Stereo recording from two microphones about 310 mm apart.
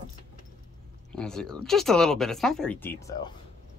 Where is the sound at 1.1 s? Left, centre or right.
Centre.